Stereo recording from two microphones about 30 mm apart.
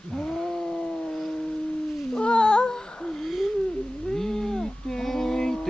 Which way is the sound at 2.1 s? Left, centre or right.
Left.